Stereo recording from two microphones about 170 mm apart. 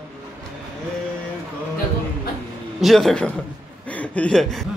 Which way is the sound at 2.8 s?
Centre (ahead or behind).